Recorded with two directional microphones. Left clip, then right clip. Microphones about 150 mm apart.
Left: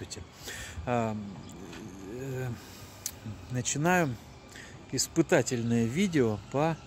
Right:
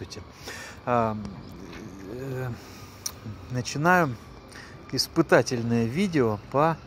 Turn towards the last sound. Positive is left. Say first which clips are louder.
# right 6 dB
turn(degrees=20)  # may be behind; listen again after turning